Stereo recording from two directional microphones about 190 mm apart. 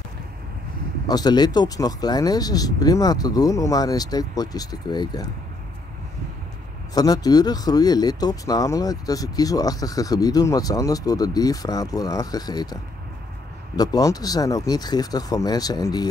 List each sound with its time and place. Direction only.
1.0 s speech: 20° left (ahead or behind)
6.9 s speech: 20° left (ahead or behind)
13.7 s speech: 20° left (ahead or behind)